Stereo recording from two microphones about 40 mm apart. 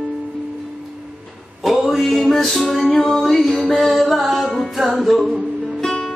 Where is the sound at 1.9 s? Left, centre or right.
Centre.